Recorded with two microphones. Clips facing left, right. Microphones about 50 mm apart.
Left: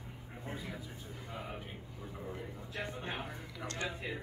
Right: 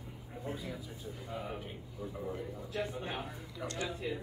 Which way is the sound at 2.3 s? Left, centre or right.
Left.